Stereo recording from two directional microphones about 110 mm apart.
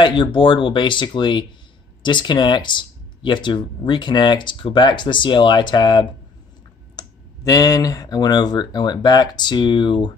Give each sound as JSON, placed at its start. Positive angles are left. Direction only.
{"t": 0.0, "sound": "speech", "side_deg": 45}